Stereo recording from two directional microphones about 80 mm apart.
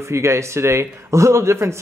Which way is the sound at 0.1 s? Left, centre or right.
Right.